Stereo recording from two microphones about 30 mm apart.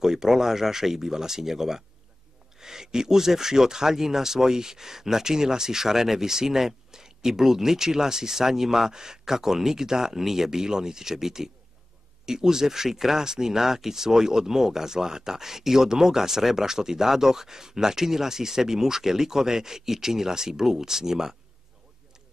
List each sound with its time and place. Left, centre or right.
0.0 s speech: centre